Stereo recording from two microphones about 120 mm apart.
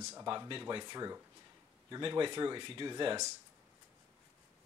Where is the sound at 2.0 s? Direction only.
45° right (ahead or behind).